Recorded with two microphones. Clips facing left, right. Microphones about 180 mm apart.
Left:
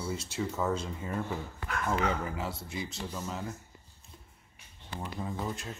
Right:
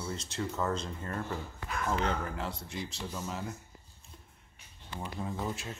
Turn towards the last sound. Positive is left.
turn(degrees=0)  # may be behind; listen again after turning